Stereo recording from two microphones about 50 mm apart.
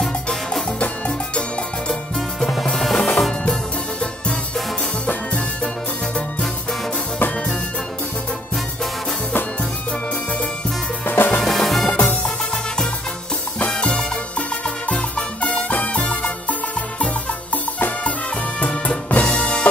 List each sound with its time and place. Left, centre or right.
0.0 s music: centre
0.7 s music: left
2.6 s music: centre
5.0 s music: left
7.2 s music: left
11.1 s music: left
11.4 s music: centre
11.9 s music: left
13.6 s salsa music: left
14.9 s music: left